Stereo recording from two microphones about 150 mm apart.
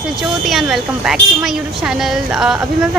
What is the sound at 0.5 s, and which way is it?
A woman's voice, centre (ahead or behind).